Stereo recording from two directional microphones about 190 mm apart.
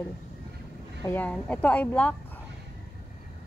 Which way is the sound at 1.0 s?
10° left (ahead or behind).